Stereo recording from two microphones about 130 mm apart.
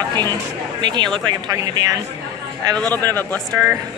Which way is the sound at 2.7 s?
10° left (ahead or behind).